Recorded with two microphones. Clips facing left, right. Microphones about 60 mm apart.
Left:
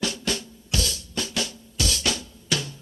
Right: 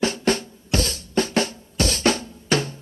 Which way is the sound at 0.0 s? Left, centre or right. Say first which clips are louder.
Right 7 dB; right.